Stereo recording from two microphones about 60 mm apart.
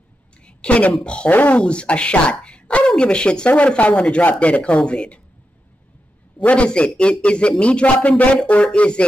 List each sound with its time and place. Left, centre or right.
0.5 s a woman's voice: centre
6.5 s speech: centre